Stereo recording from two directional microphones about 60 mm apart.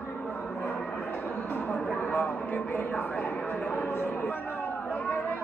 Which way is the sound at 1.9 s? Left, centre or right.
Left.